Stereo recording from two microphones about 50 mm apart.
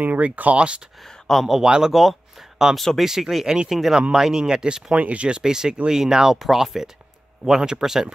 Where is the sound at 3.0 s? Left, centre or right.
Centre.